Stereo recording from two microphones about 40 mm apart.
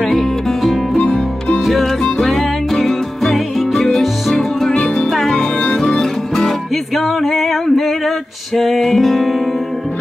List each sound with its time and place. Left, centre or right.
0.1 s music: centre
0.9 s music: left
1.6 s music: centre
5.3 s music: left
5.8 s music: centre
7.0 s a capella: centre
8.5 s music: centre